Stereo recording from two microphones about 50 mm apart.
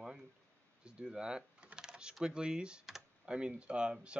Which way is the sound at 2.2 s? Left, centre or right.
Centre.